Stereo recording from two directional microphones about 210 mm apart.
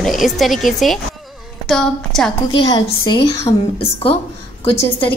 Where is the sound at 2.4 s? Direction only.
20° left (ahead or behind).